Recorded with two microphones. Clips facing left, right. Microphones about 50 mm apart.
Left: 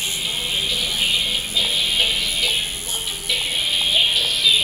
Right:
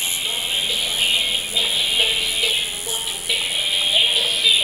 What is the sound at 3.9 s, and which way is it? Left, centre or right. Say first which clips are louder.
Music: right 1 dB; centre.